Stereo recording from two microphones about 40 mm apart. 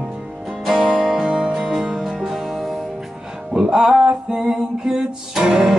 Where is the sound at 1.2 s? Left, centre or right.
Right.